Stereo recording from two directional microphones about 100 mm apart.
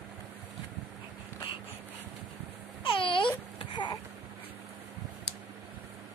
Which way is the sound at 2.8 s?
60° left (ahead or behind).